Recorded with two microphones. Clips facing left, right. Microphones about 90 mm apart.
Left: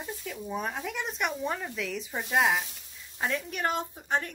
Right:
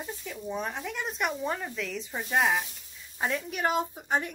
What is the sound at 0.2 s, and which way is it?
A woman's voice, centre (ahead or behind).